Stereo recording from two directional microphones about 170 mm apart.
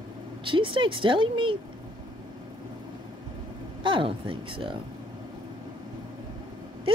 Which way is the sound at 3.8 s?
30° right (ahead or behind).